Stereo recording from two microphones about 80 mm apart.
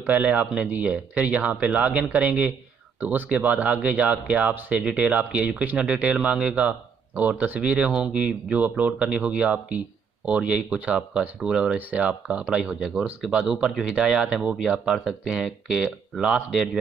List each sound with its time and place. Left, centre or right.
0.2 s speech: centre